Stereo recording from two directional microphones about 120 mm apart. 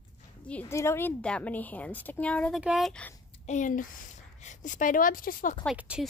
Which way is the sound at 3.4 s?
80° left.